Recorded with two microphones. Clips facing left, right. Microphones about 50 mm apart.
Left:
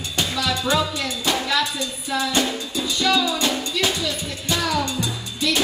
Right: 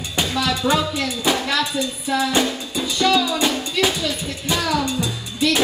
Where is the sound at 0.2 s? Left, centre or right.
Centre.